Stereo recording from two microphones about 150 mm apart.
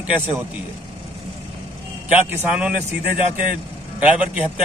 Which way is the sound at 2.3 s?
10° right (ahead or behind).